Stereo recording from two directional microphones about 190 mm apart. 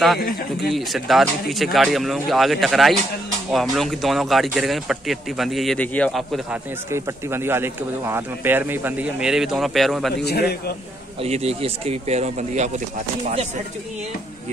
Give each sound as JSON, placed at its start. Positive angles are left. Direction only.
{"t": 0.2, "sound": "speech", "side_deg": 55}
{"t": 0.7, "sound": "speech", "side_deg": 0}
{"t": 6.9, "sound": "speech", "side_deg": -15}
{"t": 10.2, "sound": "speech", "side_deg": 55}
{"t": 11.2, "sound": "speech", "side_deg": -35}